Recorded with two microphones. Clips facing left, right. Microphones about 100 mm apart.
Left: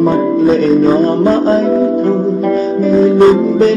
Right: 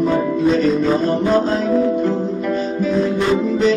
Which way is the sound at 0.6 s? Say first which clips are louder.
Left 6 dB; 40° left (ahead or behind).